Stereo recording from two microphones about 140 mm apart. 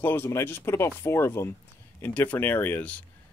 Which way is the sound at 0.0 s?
15° left (ahead or behind).